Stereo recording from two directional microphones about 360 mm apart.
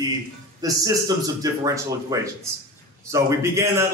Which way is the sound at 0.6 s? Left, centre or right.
Centre.